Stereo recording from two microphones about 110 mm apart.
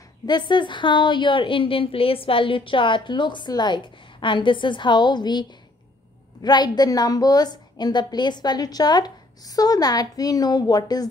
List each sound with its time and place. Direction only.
0.3 s a woman's voice: 45° left (ahead or behind)